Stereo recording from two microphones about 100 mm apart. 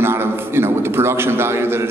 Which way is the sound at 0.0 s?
25° right (ahead or behind).